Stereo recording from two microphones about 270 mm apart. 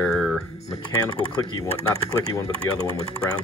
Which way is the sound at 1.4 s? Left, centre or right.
Centre.